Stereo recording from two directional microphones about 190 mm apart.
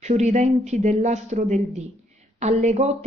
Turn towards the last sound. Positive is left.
turn(degrees=-35)  # may be behind; listen again after turning